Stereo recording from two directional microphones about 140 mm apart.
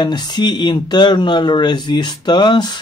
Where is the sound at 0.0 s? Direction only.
30° left (ahead or behind).